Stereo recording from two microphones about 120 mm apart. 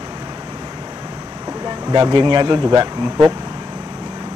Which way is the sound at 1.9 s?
40° right (ahead or behind).